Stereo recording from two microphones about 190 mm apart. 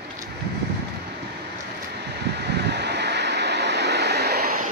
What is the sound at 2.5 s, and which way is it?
Vehicle, 60° right (ahead or behind).